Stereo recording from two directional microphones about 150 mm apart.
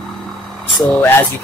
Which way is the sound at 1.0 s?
15° left (ahead or behind).